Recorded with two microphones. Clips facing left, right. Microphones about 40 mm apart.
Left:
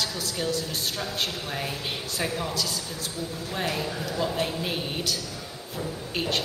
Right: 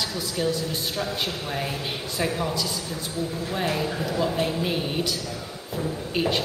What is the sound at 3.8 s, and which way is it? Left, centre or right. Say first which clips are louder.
Speech: right 4 dB; centre.